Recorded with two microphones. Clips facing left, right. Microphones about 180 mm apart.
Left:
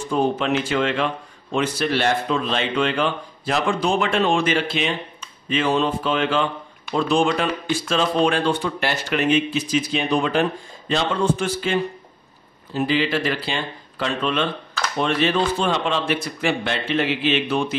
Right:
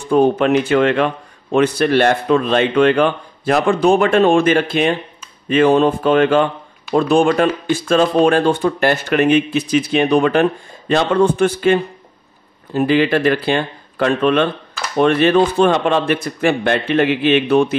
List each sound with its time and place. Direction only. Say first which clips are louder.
0.1 s speech: right 8 dB; 55° right (ahead or behind)